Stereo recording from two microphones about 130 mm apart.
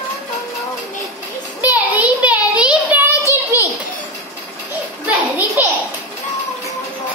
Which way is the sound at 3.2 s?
25° left (ahead or behind).